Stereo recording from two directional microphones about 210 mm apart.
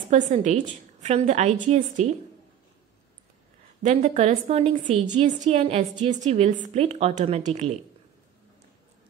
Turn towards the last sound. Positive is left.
turn(degrees=-30)  # may be behind; listen again after turning